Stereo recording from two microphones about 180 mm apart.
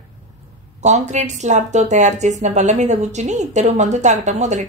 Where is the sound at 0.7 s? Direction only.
40° right (ahead or behind).